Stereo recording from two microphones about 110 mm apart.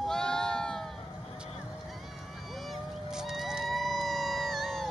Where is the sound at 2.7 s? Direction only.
5° right (ahead or behind).